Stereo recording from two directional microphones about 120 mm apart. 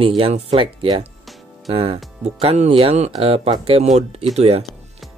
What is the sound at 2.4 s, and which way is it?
Speech, 55° right (ahead or behind).